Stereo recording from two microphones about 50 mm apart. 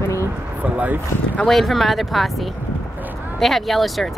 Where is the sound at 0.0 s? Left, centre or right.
Left.